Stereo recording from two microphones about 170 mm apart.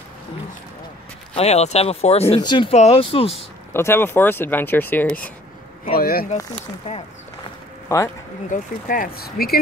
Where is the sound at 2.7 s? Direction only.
40° left (ahead or behind).